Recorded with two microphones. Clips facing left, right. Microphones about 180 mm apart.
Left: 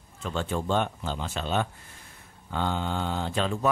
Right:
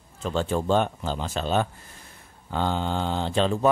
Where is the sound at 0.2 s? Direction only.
35° right (ahead or behind).